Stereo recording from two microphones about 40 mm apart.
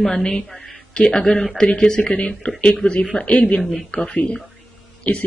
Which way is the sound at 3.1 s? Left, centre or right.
Left.